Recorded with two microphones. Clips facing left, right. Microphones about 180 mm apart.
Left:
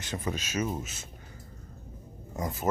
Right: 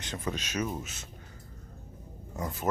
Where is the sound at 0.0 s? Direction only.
5° left (ahead or behind).